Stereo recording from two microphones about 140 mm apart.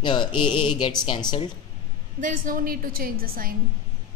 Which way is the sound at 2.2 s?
80° right.